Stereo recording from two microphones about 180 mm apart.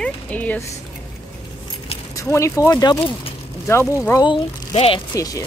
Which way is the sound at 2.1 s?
15° left (ahead or behind).